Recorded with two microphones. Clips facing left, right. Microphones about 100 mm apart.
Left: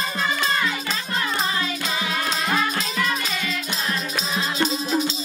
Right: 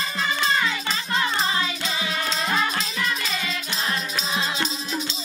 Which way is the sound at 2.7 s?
45° left (ahead or behind).